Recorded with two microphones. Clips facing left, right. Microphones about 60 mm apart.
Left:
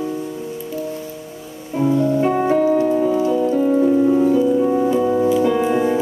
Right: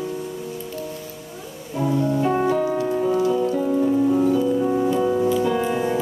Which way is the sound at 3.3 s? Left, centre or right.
Left.